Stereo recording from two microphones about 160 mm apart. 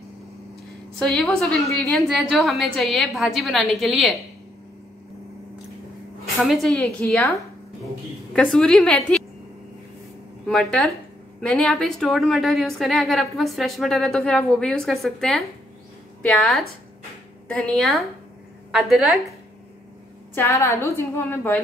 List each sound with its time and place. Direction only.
0.9 s a woman's voice: centre (ahead or behind)
6.4 s a woman's voice: centre (ahead or behind)
8.3 s a woman's voice: 5° left (ahead or behind)
10.4 s a woman's voice: centre (ahead or behind)
20.3 s a woman's voice: 20° left (ahead or behind)